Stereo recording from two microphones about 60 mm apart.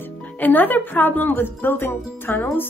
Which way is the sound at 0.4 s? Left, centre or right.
Left.